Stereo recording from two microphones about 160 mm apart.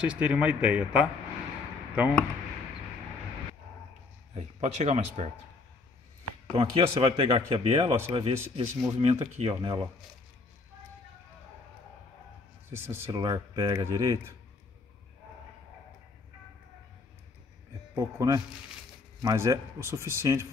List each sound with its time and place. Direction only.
0.0 s speech: 5° right (ahead or behind)
4.3 s speech: 45° right (ahead or behind)
6.5 s speech: 35° right (ahead or behind)
12.7 s speech: 15° right (ahead or behind)
13.2 s speech: 25° right (ahead or behind)
17.9 s speech: 20° right (ahead or behind)